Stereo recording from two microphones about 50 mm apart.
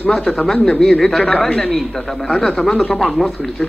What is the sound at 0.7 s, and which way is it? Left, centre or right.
Speech, centre.